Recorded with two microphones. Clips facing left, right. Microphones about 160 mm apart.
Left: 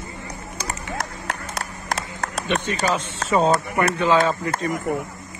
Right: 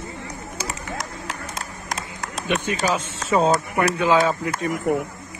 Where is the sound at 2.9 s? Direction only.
Centre (ahead or behind).